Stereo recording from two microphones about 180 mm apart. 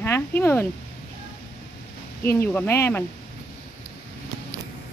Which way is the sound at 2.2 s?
15° left (ahead or behind).